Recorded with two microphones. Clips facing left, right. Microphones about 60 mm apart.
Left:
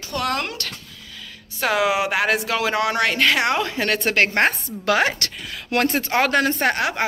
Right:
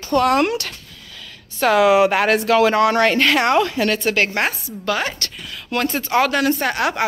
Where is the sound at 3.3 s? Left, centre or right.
Centre.